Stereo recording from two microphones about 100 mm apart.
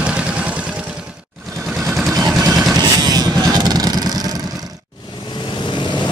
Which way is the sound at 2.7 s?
40° right (ahead or behind).